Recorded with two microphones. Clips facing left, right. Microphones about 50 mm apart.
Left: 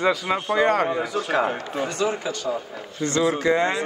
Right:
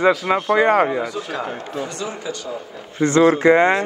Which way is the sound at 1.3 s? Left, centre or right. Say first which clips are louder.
Left 4 dB; left.